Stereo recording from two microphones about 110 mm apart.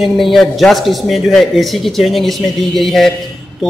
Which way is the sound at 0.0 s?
Centre (ahead or behind).